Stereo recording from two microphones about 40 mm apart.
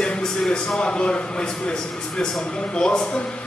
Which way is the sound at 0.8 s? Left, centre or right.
Left.